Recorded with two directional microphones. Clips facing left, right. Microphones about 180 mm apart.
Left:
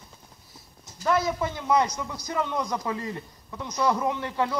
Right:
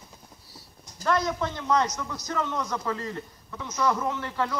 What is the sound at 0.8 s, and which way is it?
A man's voice, 5° left (ahead or behind).